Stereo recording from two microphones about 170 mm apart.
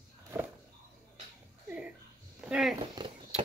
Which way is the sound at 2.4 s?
5° right (ahead or behind).